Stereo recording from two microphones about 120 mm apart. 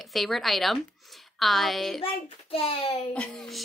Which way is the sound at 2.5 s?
50° left (ahead or behind).